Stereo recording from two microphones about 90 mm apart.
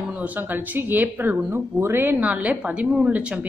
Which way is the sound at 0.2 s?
20° right (ahead or behind).